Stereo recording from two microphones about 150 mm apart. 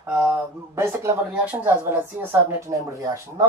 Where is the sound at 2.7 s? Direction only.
25° right (ahead or behind).